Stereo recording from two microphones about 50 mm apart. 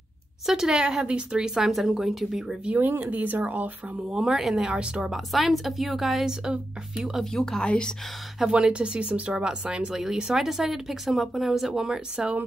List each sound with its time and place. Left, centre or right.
0.5 s speech: centre
2.7 s speech: right
4.1 s speech: centre
5.1 s a woman's voice: centre
7.3 s speech: centre
7.6 s speech: left
8.4 s speech: centre
9.4 s speech: centre